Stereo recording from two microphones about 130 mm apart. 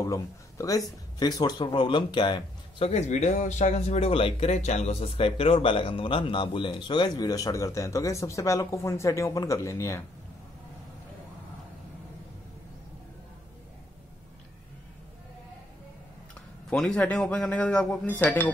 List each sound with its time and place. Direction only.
0.0 s speech: 25° left (ahead or behind)
2.8 s speech: 60° left (ahead or behind); by 10.0 s 25° left (ahead or behind)
16.7 s a man's voice: 5° left (ahead or behind)